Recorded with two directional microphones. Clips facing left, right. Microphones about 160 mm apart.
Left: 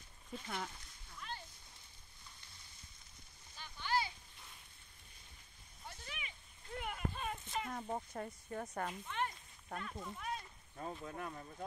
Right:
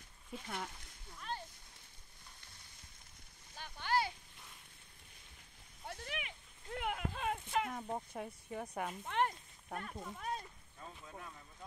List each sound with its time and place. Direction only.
0.3 s speech: 5° right (ahead or behind)
3.5 s a sound: 55° right (ahead or behind)
5.9 s a sound: 75° right (ahead or behind)
7.7 s speech: centre (ahead or behind)
9.0 s speech: 70° right (ahead or behind)
10.0 s speech: 40° right (ahead or behind)
10.8 s speech: 55° left (ahead or behind)